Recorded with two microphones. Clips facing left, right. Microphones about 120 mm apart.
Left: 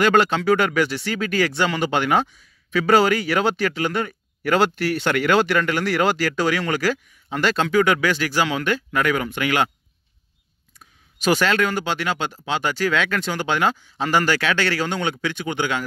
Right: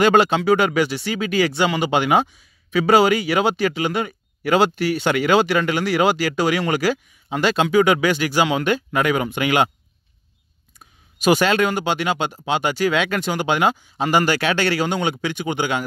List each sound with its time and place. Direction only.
0.0 s speech: 15° right (ahead or behind)
11.1 s speech: 15° right (ahead or behind)